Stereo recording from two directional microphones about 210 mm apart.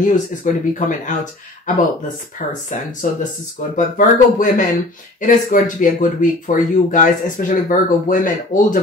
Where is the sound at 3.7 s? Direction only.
40° left (ahead or behind).